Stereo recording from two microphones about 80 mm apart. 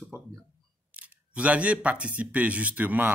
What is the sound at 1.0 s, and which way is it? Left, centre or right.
Speech, centre.